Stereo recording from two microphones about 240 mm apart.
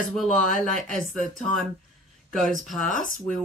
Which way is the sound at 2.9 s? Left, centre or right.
Left.